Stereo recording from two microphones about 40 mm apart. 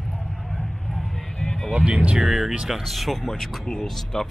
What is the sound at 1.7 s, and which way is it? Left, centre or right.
Vehicle, right.